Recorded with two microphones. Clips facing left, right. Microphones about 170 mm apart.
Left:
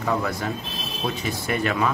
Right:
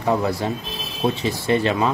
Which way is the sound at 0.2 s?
30° right (ahead or behind).